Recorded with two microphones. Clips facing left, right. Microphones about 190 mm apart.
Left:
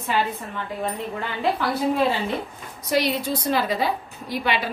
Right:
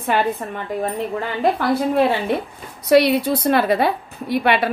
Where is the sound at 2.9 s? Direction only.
65° right (ahead or behind).